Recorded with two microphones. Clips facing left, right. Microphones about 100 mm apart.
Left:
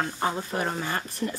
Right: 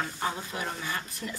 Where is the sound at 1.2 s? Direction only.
25° left (ahead or behind).